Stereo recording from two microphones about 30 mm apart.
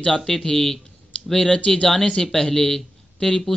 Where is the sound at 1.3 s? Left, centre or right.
Left.